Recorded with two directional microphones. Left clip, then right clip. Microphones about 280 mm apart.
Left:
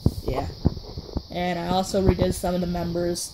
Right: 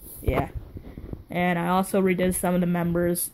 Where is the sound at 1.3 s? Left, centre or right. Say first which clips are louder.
Right 1 dB; centre.